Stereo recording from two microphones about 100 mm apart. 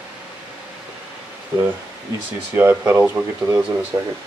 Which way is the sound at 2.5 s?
25° right (ahead or behind).